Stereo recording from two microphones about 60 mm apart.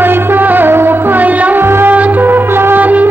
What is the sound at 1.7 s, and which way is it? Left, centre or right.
Music, right.